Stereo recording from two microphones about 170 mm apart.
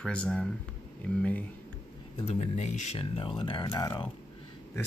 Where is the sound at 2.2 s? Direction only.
40° left (ahead or behind).